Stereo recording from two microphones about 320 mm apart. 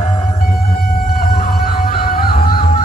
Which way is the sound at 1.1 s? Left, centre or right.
Left.